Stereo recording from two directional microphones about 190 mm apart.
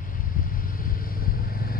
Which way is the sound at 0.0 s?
45° left (ahead or behind).